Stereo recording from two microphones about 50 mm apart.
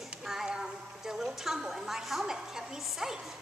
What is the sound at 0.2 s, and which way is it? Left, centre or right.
Child singing, centre.